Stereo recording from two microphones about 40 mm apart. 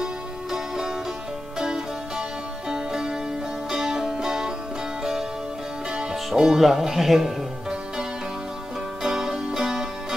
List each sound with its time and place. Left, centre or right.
0.0 s music: centre
5.9 s speech: right
9.0 s music: centre